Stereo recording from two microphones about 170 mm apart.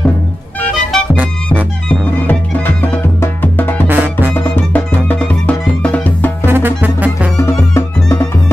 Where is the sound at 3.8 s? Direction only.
10° right (ahead or behind).